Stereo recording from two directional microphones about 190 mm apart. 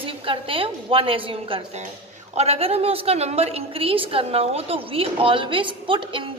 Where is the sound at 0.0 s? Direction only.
30° right (ahead or behind).